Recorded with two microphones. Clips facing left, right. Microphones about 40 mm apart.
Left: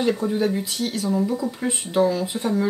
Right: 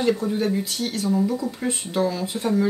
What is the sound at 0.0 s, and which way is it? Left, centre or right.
Speech, centre.